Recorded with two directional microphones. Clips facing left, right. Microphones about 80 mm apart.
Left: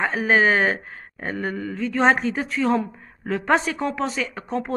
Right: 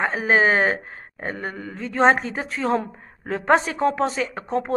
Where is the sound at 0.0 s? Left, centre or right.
Right.